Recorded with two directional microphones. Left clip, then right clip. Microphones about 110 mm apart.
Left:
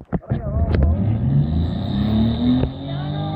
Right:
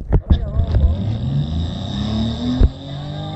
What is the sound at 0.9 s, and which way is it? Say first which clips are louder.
Music: left 2 dB; 35° right (ahead or behind).